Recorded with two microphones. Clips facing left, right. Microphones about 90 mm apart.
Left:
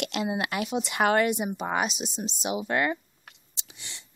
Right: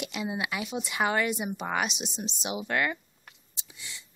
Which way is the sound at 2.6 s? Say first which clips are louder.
Left 2 dB; 25° left (ahead or behind).